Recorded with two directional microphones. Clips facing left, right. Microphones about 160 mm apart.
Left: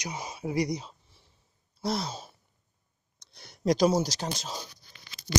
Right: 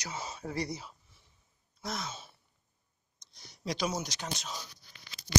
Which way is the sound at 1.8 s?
35° left (ahead or behind).